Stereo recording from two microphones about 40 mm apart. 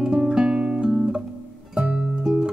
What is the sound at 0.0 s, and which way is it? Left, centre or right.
Music, centre.